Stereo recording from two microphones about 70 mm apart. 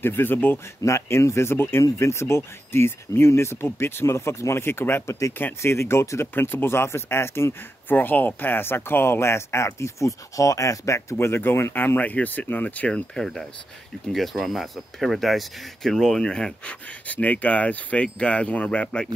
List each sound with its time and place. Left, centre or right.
0.0 s speech: left
0.8 s speech: left; by 13.0 s centre
13.1 s speech: centre